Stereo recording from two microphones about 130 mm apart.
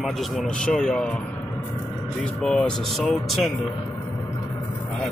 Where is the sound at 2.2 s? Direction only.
5° left (ahead or behind).